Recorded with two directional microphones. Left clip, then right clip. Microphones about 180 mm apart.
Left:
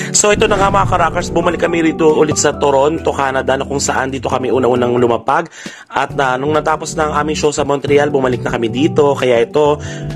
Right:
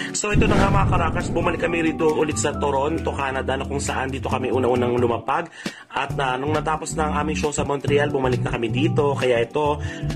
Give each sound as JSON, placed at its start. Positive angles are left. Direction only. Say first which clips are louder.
{"t": 0.2, "sound": "speech", "louder": "left 9 dB", "side_deg": 50}